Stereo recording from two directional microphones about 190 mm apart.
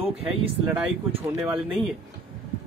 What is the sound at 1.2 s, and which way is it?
Speech, 20° right (ahead or behind).